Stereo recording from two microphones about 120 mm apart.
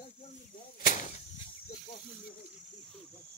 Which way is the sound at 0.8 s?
90° left.